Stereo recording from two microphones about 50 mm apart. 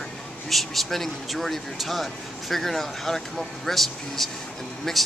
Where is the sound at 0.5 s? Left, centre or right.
Centre.